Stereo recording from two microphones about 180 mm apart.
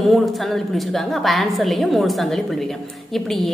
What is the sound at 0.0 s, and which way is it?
A woman's voice, centre (ahead or behind).